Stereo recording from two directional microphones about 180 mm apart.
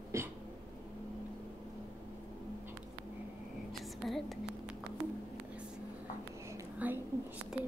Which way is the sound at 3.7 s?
Centre (ahead or behind).